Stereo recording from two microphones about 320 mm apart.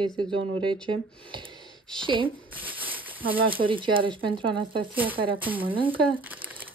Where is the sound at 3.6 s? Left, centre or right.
Centre.